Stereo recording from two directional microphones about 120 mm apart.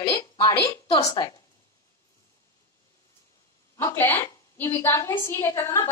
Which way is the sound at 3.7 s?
20° left (ahead or behind).